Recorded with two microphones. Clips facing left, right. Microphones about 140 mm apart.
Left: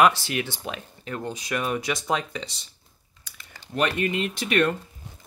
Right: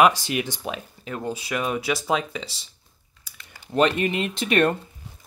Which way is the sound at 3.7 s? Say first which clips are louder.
Right 5 dB; 30° right (ahead or behind).